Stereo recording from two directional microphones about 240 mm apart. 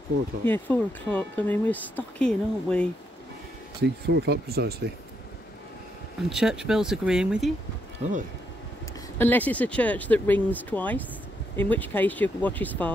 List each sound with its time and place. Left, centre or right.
0.5 s speech: centre
3.8 s speech: right
6.2 s speech: centre
8.0 s speech: right
9.2 s speech: centre